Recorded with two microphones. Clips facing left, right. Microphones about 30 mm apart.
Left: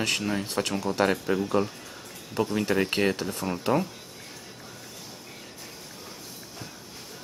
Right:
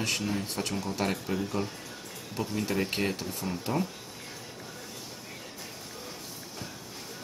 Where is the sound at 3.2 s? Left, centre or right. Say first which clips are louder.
Left 5 dB; left.